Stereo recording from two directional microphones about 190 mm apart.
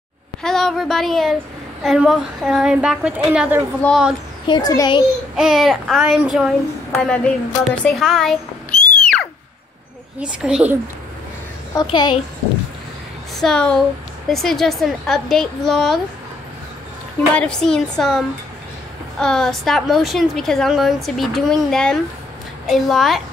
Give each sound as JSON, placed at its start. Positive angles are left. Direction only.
{"t": 0.4, "sound": "a sound", "side_deg": 0}
{"t": 1.8, "sound": "a woman's voice", "side_deg": 0}
{"t": 4.5, "sound": "a child's voice", "side_deg": 20}
{"t": 5.3, "sound": "a woman's voice", "side_deg": 0}
{"t": 9.0, "sound": "a sound", "side_deg": 5}
{"t": 10.1, "sound": "a woman's voice", "side_deg": -5}
{"t": 11.7, "sound": "a child's voice", "side_deg": 25}
{"t": 13.4, "sound": "a woman's voice", "side_deg": 5}
{"t": 17.3, "sound": "a woman's voice", "side_deg": 5}